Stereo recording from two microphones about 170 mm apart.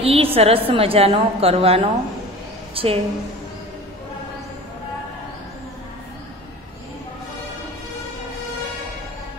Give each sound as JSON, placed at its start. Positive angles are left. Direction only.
{"t": 0.0, "sound": "a woman's voice", "side_deg": -35}